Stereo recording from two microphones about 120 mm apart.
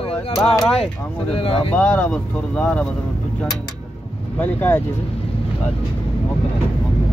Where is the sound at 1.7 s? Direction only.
10° left (ahead or behind).